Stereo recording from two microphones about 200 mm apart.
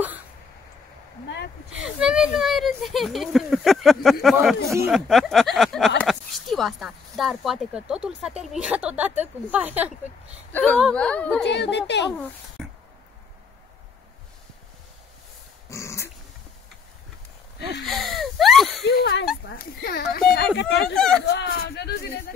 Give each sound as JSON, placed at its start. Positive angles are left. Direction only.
{"t": 1.7, "sound": "speech", "side_deg": -5}
{"t": 10.5, "sound": "speech", "side_deg": 5}
{"t": 11.4, "sound": "speech", "side_deg": 60}
{"t": 12.6, "sound": "a sound", "side_deg": 0}
{"t": 15.7, "sound": "dog", "side_deg": 15}
{"t": 17.8, "sound": "wheeze", "side_deg": 0}
{"t": 18.9, "sound": "speech", "side_deg": 60}
{"t": 19.5, "sound": "speech", "side_deg": 50}
{"t": 20.9, "sound": "speech", "side_deg": 0}
{"t": 21.2, "sound": "speech", "side_deg": 55}